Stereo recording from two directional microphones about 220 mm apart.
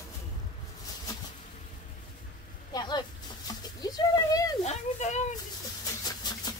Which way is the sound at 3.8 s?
15° left (ahead or behind).